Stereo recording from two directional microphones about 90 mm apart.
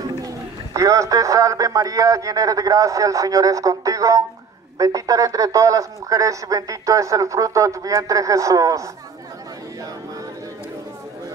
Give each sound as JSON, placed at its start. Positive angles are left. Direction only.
{"t": 0.7, "sound": "speech", "side_deg": -40}